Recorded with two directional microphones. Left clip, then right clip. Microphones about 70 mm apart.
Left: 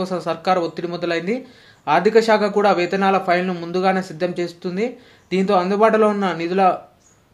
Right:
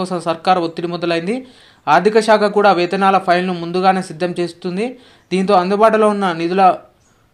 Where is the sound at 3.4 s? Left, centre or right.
Right.